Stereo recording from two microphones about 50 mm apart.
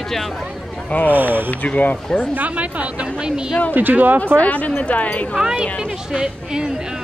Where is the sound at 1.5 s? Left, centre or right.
Left.